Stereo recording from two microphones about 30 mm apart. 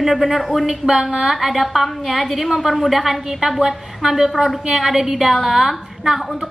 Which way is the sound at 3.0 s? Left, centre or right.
Centre.